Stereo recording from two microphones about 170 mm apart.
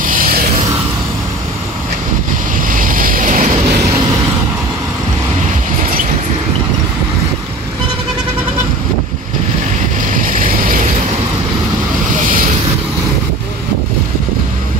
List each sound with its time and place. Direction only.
0.0 s music: 55° right (ahead or behind)
2.7 s boat: 55° right (ahead or behind)
10.2 s vehicle: 55° right (ahead or behind)